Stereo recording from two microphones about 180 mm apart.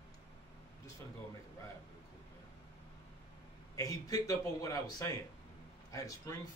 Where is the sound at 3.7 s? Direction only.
20° left (ahead or behind).